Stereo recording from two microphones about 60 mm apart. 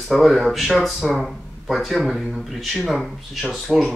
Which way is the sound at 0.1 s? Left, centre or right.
Centre.